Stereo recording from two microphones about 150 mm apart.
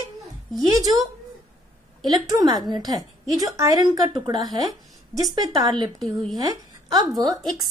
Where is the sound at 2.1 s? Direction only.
25° right (ahead or behind).